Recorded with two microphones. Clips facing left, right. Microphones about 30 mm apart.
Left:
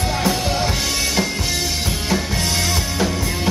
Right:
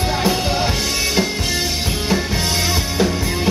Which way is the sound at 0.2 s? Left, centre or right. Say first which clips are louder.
Right 1 dB; centre.